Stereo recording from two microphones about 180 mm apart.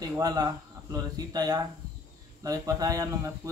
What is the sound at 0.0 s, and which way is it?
Speech, 20° right (ahead or behind).